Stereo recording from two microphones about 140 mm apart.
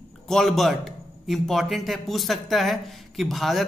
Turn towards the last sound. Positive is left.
turn(degrees=0)  # may be behind; listen again after turning